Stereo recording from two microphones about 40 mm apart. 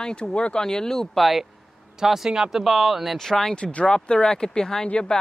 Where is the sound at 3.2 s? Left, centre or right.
Centre.